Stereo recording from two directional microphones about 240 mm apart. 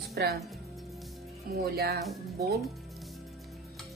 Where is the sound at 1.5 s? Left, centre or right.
Right.